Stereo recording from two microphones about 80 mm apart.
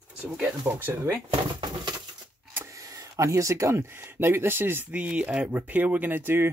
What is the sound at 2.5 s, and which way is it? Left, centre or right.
Speech, right.